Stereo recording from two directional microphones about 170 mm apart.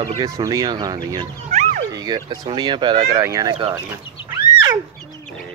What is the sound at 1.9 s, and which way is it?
Speech, 25° right (ahead or behind).